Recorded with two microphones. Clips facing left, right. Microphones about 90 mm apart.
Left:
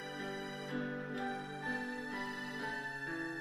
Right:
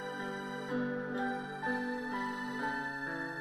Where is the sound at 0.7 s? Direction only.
40° right (ahead or behind).